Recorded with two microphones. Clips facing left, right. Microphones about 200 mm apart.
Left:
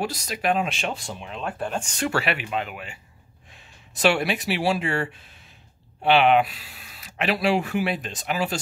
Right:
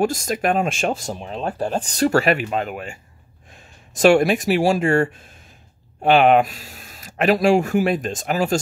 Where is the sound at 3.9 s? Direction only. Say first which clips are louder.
Right 8 dB; 45° right (ahead or behind).